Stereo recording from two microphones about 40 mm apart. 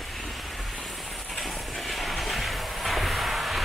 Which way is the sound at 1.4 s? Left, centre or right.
Centre.